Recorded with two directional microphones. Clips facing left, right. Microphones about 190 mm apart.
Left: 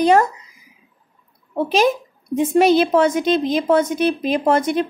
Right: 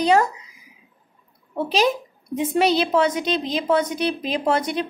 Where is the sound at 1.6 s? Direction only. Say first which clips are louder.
Left 3 dB; 50° left (ahead or behind).